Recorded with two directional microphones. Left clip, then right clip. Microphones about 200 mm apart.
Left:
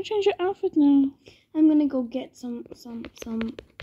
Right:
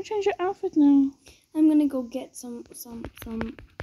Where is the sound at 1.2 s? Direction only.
25° left (ahead or behind).